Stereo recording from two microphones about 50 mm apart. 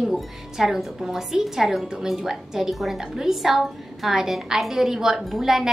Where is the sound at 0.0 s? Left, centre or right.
Centre.